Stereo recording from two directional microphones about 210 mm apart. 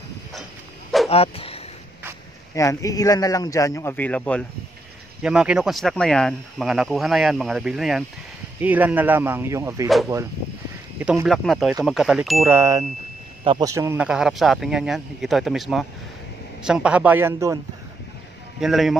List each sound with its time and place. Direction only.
1.0 s speech: 30° left (ahead or behind)
2.5 s a man's voice: 15° left (ahead or behind); by 9.8 s 15° right (ahead or behind)
11.0 s speech: 5° right (ahead or behind)
12.4 s speech: 15° right (ahead or behind)
18.6 s speech: centre (ahead or behind)